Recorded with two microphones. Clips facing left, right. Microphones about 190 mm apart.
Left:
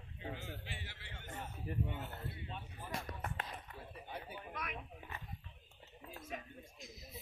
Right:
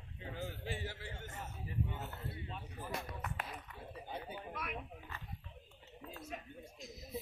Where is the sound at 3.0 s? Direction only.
35° left (ahead or behind).